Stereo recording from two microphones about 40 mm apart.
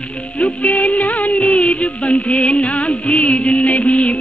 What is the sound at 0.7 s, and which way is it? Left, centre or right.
Music, left.